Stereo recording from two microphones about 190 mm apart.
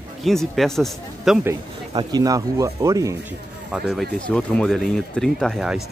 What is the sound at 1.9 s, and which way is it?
Speech, 20° right (ahead or behind).